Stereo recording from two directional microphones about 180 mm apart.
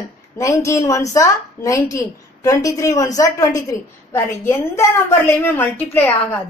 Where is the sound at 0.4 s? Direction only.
15° left (ahead or behind).